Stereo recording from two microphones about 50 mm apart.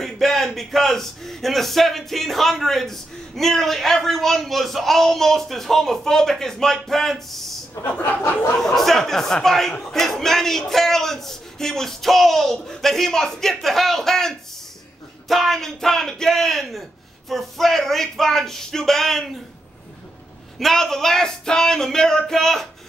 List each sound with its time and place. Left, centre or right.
0.0 s a man's voice: centre
7.8 s speech: left
8.5 s a man's voice: centre
20.5 s speech: centre